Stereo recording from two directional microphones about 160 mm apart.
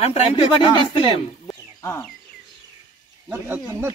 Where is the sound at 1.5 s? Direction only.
15° left (ahead or behind).